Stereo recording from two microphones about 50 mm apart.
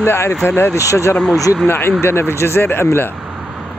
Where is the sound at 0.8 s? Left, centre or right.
Left.